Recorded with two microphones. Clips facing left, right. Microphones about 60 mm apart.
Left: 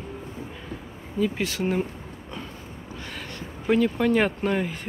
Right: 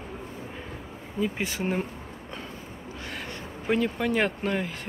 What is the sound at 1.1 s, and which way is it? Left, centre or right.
Speech, right.